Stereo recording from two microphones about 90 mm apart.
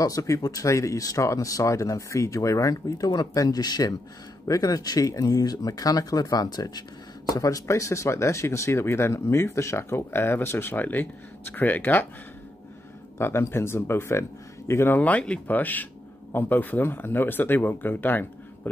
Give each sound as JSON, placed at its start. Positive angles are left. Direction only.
{"t": 0.0, "sound": "speech", "side_deg": 40}
{"t": 13.2, "sound": "speech", "side_deg": 30}
{"t": 15.0, "sound": "speech", "side_deg": 15}